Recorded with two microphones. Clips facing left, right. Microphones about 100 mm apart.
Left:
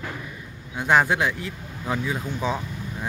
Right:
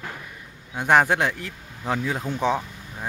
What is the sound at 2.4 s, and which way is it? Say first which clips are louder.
Speech: right 4 dB; 65° right (ahead or behind).